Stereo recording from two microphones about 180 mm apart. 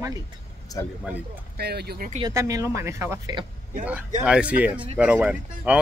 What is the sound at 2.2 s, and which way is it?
Speech, 20° right (ahead or behind).